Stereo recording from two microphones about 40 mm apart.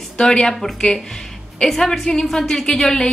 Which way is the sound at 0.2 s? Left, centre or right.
Left.